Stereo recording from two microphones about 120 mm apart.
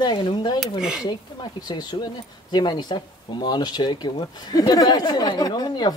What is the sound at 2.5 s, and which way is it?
Speech, 35° left (ahead or behind).